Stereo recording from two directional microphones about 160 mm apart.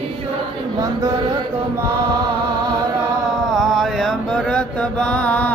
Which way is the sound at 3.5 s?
Centre (ahead or behind).